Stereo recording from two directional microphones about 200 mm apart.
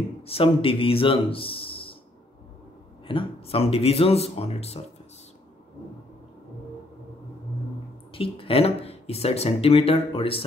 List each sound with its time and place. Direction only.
0.2 s a man's voice: 30° left (ahead or behind)
3.1 s speech: 25° left (ahead or behind)
8.1 s speech: 25° left (ahead or behind)